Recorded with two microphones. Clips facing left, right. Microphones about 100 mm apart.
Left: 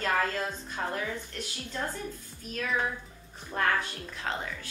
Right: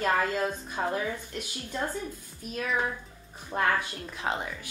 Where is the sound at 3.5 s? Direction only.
10° right (ahead or behind).